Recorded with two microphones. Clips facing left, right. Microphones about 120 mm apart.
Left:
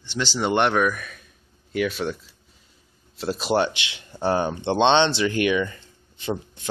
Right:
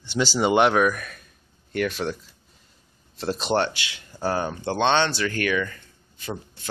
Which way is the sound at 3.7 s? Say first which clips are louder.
Left 1 dB; 20° left (ahead or behind).